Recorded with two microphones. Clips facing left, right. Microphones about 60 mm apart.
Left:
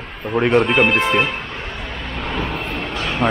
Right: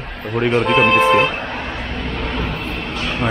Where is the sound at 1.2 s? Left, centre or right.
Right.